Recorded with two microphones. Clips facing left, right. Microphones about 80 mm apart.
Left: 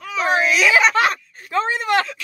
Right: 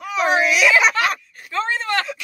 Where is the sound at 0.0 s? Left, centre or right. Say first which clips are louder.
Right 1 dB; centre.